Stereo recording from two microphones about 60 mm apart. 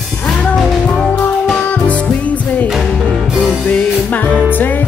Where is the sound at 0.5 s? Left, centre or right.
Centre.